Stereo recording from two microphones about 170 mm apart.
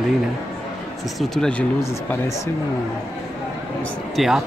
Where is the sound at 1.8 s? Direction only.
15° left (ahead or behind).